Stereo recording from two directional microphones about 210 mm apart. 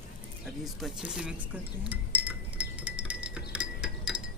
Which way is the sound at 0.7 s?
Centre (ahead or behind).